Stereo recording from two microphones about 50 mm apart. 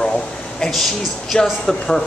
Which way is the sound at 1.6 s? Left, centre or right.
Centre.